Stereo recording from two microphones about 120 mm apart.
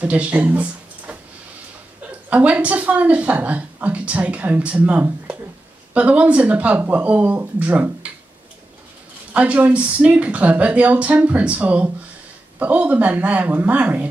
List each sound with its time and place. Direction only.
0.0 s a woman's voice: 10° right (ahead or behind)
9.3 s a woman's voice: 10° right (ahead or behind)